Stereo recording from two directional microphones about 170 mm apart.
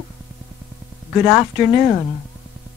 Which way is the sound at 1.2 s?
10° left (ahead or behind).